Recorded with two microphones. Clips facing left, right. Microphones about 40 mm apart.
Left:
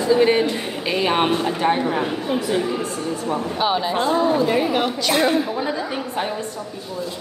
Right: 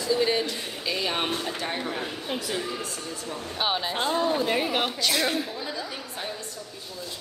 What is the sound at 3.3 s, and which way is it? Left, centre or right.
A woman's voice, left.